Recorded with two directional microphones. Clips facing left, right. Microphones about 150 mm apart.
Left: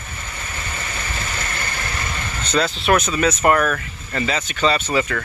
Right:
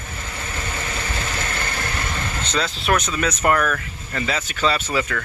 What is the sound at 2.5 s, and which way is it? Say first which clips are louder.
Speech: left 4 dB; 5° left (ahead or behind).